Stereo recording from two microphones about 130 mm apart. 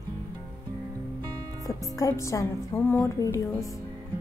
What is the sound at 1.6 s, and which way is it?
Speech, 25° left (ahead or behind).